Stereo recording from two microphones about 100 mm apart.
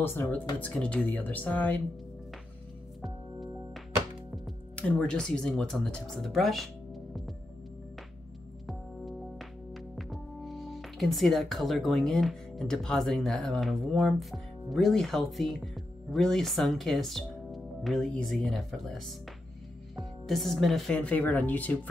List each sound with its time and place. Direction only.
0.0 s speech: 20° left (ahead or behind)
3.0 s music: centre (ahead or behind)
4.7 s speech: 10° left (ahead or behind)
8.6 s music: centre (ahead or behind)
18.3 s speech: centre (ahead or behind)
20.0 s speech: centre (ahead or behind)
20.9 s speech: 15° left (ahead or behind)